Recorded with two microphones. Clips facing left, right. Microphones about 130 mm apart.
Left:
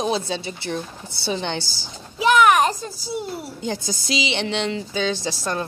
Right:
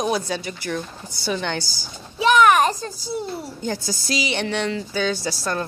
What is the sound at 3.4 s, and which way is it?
A woman's voice, 20° left (ahead or behind).